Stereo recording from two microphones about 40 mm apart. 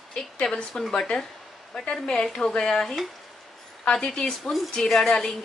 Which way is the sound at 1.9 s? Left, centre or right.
Left.